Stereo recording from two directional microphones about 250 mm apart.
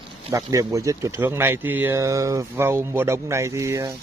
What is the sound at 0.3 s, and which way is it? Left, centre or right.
Speech, centre.